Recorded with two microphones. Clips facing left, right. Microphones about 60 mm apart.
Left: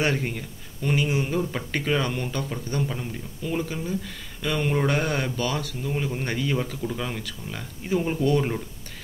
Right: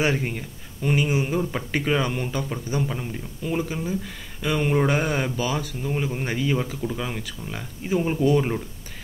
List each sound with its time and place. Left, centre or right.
0.0 s speech: centre